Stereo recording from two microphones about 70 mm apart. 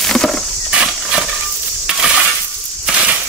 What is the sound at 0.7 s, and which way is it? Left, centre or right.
Horse, centre.